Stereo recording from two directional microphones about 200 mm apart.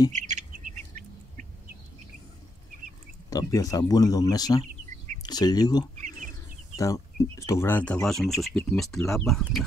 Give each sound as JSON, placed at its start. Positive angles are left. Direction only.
{"t": 0.1, "sound": "bird", "side_deg": -40}
{"t": 3.3, "sound": "speech", "side_deg": 15}